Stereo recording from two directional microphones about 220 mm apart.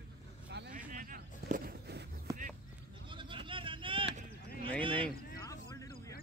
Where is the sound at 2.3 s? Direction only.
15° right (ahead or behind).